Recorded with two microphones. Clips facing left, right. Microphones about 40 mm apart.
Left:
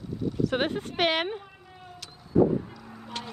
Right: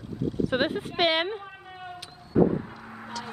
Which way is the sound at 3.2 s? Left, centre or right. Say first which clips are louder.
Even; left.